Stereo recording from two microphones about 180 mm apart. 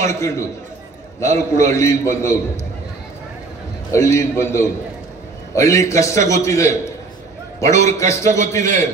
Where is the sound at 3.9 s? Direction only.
15° left (ahead or behind).